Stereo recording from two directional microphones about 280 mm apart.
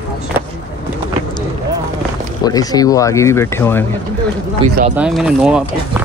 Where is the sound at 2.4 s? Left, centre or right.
Centre.